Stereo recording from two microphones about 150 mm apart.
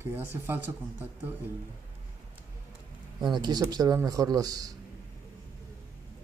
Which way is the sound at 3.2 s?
30° right (ahead or behind).